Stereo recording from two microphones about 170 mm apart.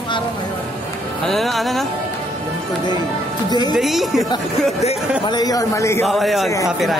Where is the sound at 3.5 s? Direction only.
25° left (ahead or behind).